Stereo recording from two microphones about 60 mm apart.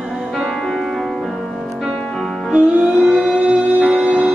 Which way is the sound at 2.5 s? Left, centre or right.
Centre.